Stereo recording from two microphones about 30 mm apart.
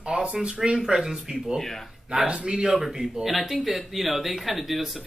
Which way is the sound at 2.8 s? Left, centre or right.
Centre.